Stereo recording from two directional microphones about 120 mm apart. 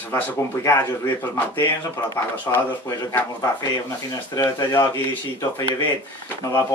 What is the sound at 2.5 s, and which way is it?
Speech, 20° left (ahead or behind).